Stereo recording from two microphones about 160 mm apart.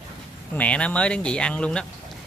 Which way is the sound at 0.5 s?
10° left (ahead or behind).